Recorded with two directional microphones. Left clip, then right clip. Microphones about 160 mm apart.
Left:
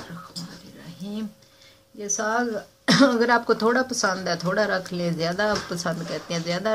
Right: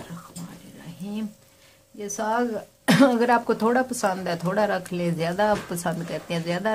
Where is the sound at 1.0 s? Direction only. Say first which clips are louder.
Even; 30° right (ahead or behind).